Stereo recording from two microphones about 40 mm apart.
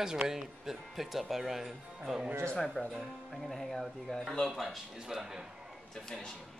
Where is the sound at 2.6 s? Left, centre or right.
Centre.